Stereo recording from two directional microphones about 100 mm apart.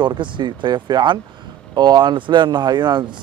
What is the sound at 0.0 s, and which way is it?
Speech, 55° right (ahead or behind).